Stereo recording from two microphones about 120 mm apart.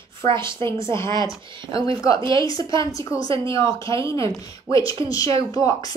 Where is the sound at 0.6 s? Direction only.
20° left (ahead or behind).